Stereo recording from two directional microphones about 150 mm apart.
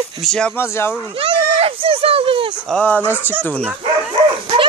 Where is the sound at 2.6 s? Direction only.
5° left (ahead or behind).